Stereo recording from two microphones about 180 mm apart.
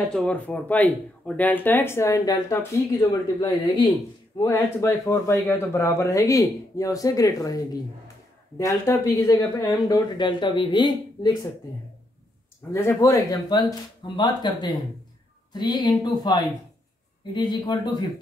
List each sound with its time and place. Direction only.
0.1 s speech: 5° left (ahead or behind); by 11.3 s 25° left (ahead or behind)
12.7 s speech: 15° left (ahead or behind)